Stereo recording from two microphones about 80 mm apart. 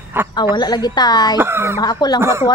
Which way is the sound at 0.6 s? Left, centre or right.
Left.